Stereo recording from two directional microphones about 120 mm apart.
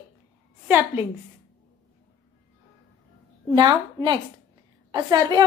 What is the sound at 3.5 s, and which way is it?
A woman's voice, 35° right (ahead or behind).